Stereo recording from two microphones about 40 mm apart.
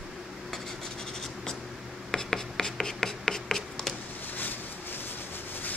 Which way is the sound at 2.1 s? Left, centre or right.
Centre.